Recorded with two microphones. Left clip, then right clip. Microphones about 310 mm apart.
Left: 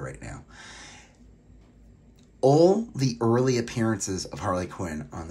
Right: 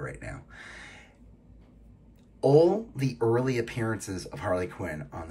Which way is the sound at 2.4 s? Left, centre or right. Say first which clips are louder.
Left 2 dB; centre.